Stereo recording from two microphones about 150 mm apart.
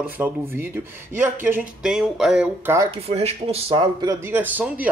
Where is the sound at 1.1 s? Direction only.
15° right (ahead or behind).